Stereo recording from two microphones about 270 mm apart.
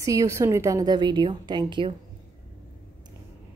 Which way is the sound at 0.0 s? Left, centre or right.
Centre.